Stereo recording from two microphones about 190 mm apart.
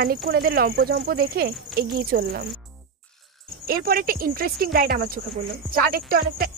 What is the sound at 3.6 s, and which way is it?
Speech, 50° right (ahead or behind).